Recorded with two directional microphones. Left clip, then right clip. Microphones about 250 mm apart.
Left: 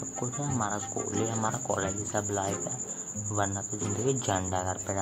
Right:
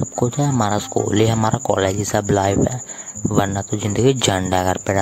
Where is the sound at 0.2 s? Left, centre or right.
Right.